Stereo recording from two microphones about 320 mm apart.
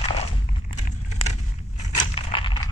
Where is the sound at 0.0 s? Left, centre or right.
Centre.